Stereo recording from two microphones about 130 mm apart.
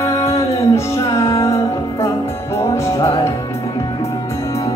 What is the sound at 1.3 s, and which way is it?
Music, 25° left (ahead or behind).